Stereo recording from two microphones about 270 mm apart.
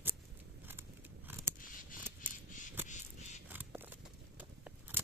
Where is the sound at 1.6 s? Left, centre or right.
Left.